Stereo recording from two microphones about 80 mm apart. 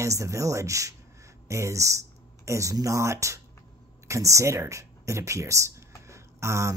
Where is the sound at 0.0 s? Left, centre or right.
Right.